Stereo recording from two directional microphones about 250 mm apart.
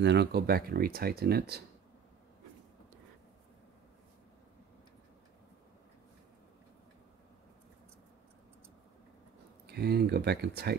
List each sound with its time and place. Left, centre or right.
0.0 s speech: right
9.7 s speech: right